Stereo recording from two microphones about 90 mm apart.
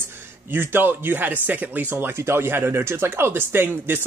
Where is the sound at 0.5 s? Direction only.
25° right (ahead or behind).